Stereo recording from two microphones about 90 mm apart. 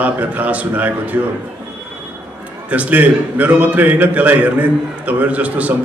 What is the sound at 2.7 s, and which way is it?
A man's voice, 15° right (ahead or behind).